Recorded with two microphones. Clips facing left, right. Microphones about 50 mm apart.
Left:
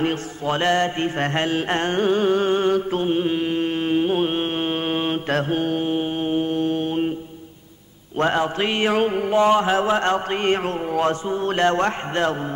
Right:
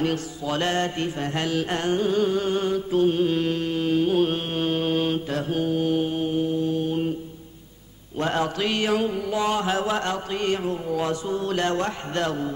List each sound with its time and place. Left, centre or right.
0.0 s mantra: left
3.6 s mantra: left
5.3 s mantra: left
8.2 s mantra: left
8.9 s mantra: left
10.6 s speech: left
11.2 s mantra: left